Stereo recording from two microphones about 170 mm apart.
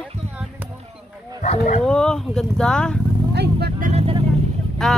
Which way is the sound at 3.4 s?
70° right (ahead or behind).